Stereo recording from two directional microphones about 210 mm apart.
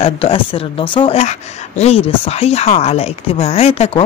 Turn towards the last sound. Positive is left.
turn(degrees=30)  # may be behind; listen again after turning